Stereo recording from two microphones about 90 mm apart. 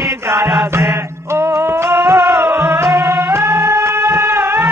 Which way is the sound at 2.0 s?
Centre (ahead or behind).